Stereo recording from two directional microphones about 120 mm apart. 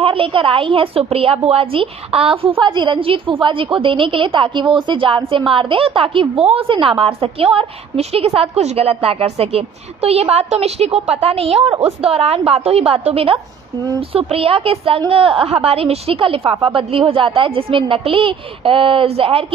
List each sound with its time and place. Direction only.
0.0 s a woman's voice: 50° right (ahead or behind)